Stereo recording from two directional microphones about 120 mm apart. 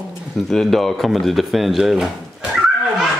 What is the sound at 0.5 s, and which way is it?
Speech, centre (ahead or behind).